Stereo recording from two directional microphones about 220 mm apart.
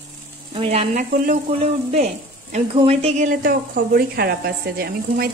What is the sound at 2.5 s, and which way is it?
Speech, 25° right (ahead or behind).